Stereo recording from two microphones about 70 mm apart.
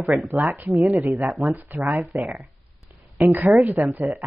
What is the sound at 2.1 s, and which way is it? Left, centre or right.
Speech, right.